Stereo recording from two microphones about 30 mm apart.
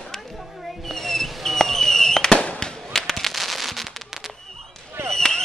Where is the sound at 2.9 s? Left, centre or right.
Centre.